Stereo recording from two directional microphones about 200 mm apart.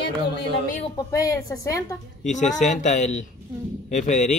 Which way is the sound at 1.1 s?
15° left (ahead or behind).